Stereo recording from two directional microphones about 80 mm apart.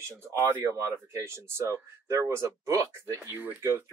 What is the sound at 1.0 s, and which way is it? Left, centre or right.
Speech, right.